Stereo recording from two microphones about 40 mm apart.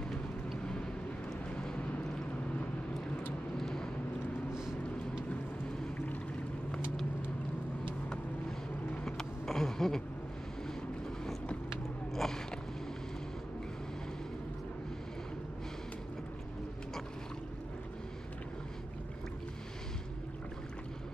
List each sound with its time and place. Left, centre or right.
1.6 s boat: left
3.5 s vehicle: centre
4.5 s vehicle: centre
9.0 s a sound: centre
12.1 s biting: centre